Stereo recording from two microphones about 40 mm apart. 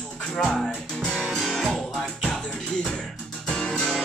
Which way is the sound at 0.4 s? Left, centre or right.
Centre.